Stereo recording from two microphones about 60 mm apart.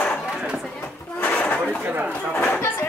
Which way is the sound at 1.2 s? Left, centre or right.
Left.